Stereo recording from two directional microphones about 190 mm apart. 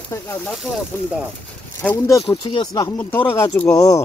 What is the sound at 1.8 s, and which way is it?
Speech, 15° left (ahead or behind).